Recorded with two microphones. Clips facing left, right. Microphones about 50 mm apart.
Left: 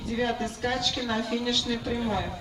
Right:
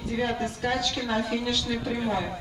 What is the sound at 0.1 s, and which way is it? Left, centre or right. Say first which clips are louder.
A woman's voice: even; centre.